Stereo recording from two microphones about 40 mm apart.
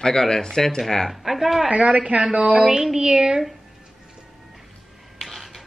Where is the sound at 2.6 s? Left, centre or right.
Centre.